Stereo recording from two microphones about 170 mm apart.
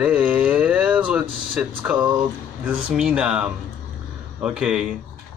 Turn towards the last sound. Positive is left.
turn(degrees=-5)  # may be behind; listen again after turning